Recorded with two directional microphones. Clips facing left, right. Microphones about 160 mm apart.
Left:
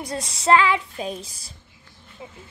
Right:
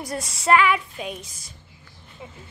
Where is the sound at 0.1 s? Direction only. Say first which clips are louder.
Left 1 dB; 25° left (ahead or behind).